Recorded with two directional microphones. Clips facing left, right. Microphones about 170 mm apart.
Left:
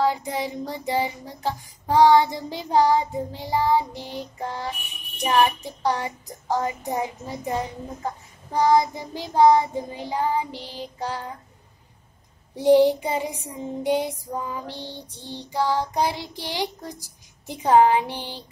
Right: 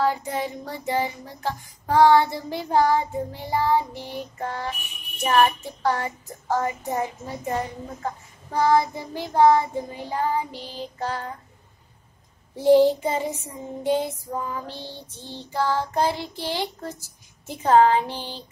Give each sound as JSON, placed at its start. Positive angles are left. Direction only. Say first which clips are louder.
{"t": 0.0, "sound": "child singing", "louder": "even", "side_deg": 15}
{"t": 8.5, "sound": "child singing", "louder": "left 1 dB", "side_deg": 15}
{"t": 12.5, "sound": "child singing", "louder": "even", "side_deg": 15}